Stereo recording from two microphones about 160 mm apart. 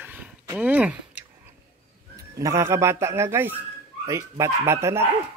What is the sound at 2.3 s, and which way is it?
Speech, 20° right (ahead or behind).